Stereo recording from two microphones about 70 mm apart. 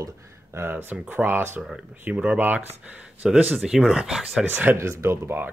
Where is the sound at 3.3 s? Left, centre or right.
Centre.